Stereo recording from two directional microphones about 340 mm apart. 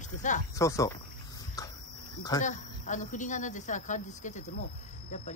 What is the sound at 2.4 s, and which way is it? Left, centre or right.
A woman's voice, left.